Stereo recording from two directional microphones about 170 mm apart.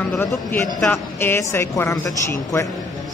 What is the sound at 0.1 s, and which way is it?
A woman's voice, 5° left (ahead or behind).